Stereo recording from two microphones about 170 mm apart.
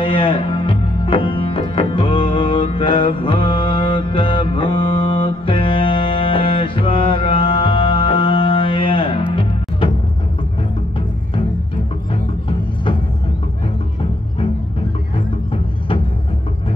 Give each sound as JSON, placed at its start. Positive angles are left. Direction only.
{"t": 0.0, "sound": "music", "side_deg": 30}